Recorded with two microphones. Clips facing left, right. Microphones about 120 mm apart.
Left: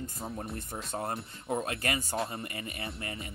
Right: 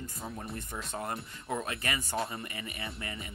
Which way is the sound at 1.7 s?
45° left (ahead or behind).